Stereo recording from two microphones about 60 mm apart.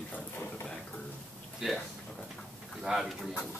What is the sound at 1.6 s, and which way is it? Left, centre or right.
Speech, centre.